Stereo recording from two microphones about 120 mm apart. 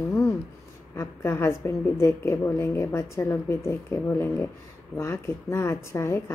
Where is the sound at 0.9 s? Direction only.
20° left (ahead or behind).